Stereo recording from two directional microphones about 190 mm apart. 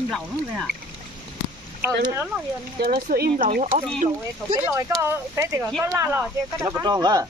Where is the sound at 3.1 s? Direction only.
50° right (ahead or behind).